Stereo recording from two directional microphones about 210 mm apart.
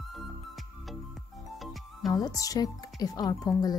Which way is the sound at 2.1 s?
15° left (ahead or behind).